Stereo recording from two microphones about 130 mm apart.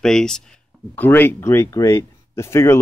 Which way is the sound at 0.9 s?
15° left (ahead or behind).